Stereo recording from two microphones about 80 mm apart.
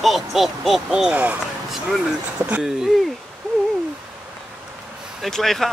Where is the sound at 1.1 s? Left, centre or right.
Centre.